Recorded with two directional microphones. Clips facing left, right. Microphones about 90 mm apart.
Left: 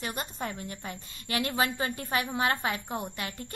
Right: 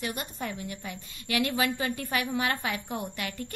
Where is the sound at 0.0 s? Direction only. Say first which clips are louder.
Even; 35° left (ahead or behind).